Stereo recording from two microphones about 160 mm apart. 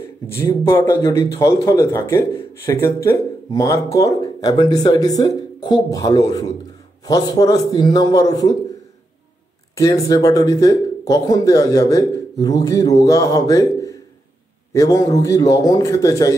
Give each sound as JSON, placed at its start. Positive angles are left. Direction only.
{"t": 0.4, "sound": "speech", "side_deg": 20}
{"t": 9.8, "sound": "speech", "side_deg": 20}